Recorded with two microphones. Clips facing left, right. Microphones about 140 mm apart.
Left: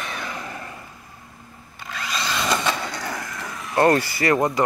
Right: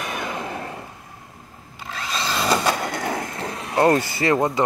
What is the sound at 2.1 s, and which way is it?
Vehicle, 30° right (ahead or behind).